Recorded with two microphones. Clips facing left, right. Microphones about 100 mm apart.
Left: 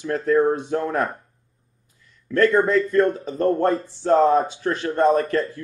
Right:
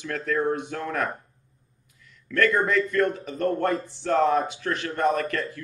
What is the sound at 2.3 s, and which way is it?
A man's voice, 30° left (ahead or behind).